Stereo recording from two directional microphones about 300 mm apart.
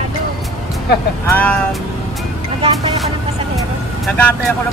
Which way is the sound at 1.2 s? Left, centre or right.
Centre.